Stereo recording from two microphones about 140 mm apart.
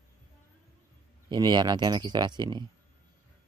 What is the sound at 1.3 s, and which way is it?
Speech, 30° right (ahead or behind).